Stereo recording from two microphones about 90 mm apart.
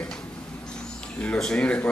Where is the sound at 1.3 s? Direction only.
10° left (ahead or behind).